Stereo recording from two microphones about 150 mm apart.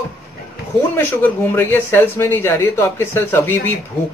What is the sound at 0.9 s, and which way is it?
Speech, 15° left (ahead or behind).